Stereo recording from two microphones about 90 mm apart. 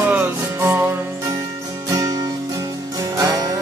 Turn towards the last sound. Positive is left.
turn(degrees=-45)  # may be behind; listen again after turning